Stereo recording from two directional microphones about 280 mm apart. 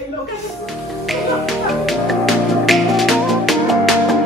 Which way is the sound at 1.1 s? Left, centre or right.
Centre.